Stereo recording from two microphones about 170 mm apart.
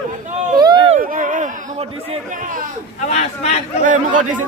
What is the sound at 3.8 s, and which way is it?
Speech, 50° right (ahead or behind).